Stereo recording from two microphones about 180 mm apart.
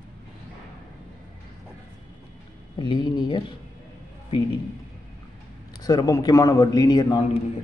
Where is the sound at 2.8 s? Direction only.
25° left (ahead or behind).